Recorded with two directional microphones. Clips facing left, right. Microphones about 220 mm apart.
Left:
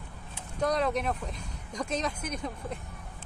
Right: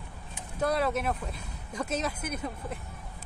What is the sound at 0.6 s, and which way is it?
Speech, 5° right (ahead or behind).